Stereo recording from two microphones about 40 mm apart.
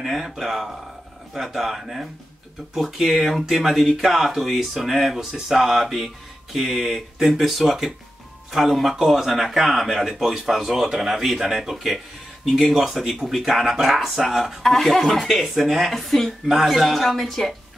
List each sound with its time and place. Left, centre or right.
0.0 s speech: centre